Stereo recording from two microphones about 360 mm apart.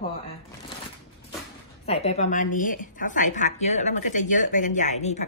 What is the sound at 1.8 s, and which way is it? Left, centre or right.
A woman's voice, centre.